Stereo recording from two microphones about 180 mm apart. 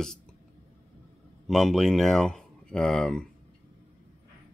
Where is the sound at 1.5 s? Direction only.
Centre (ahead or behind).